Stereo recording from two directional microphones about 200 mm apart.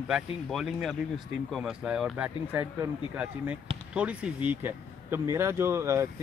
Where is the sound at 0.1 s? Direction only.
Centre (ahead or behind).